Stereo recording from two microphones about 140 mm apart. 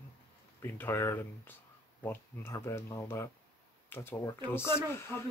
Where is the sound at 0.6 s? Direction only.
15° left (ahead or behind).